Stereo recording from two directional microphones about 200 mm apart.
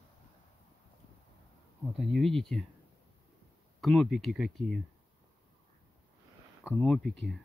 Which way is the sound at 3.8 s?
Centre (ahead or behind).